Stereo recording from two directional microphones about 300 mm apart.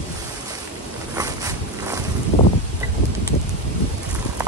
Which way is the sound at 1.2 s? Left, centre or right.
Centre.